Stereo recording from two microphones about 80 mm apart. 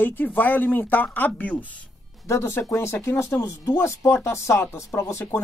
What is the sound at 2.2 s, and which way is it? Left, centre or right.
Speech, left.